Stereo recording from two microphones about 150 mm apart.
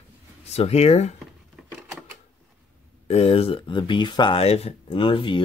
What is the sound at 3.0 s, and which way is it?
Speech, 40° left (ahead or behind).